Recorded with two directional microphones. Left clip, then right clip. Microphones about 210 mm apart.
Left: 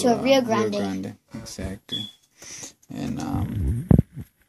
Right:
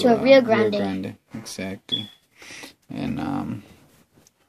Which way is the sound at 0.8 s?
Centre (ahead or behind).